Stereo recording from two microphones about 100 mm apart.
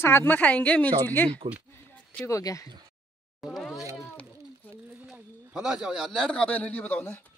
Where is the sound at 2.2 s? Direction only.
30° left (ahead or behind).